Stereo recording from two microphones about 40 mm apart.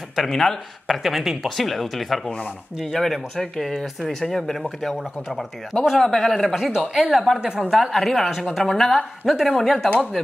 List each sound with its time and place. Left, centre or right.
0.1 s speech: centre
7.3 s a woman's voice: centre
7.7 s speech: centre